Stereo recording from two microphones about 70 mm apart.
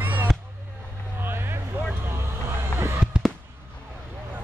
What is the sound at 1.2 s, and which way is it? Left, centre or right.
Vehicle, right.